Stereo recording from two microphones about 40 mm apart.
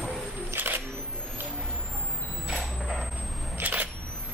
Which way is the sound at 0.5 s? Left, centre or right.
Right.